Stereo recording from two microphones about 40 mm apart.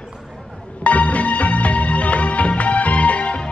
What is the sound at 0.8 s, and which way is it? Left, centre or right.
Music, left.